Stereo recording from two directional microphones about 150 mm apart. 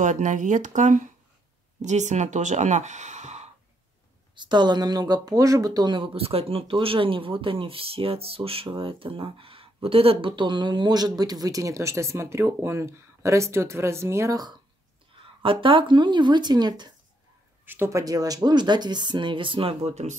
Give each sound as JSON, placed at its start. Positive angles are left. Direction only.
{"t": 0.0, "sound": "speech", "side_deg": -55}
{"t": 4.4, "sound": "speech", "side_deg": -30}
{"t": 17.6, "sound": "speech", "side_deg": -15}